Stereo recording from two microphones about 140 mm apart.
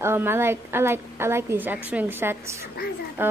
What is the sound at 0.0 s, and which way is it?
A woman's voice, 15° right (ahead or behind).